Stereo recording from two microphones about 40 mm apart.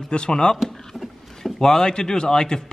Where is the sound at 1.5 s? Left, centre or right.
Centre.